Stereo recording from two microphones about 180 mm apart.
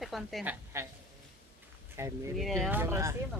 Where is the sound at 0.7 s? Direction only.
15° right (ahead or behind).